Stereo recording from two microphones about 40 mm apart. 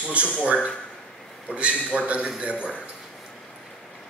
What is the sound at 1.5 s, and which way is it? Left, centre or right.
Speech, right.